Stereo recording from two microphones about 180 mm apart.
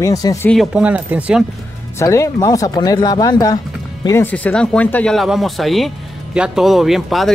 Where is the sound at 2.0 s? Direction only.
15° left (ahead or behind).